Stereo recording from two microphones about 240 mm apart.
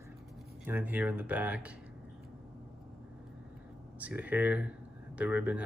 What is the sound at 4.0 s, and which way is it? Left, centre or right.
Speech, centre.